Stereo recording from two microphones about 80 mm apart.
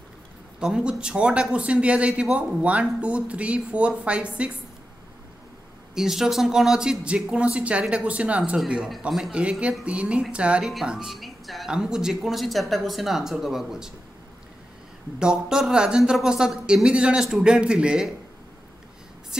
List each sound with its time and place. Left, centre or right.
0.6 s speech: centre
5.9 s a woman's voice: centre
15.1 s speech: centre